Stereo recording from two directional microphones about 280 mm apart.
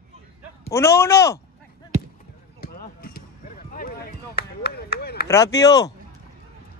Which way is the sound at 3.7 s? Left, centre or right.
Left.